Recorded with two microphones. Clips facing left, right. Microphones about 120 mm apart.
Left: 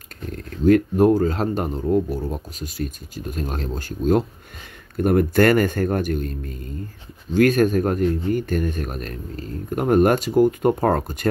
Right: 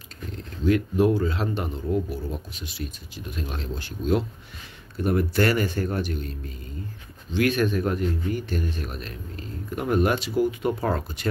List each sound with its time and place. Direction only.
0.3 s speech: 50° left (ahead or behind)